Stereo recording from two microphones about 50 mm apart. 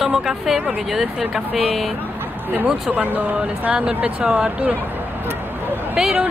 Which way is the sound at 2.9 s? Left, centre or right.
Right.